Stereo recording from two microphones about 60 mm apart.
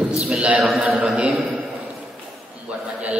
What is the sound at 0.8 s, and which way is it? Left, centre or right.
Speech, right.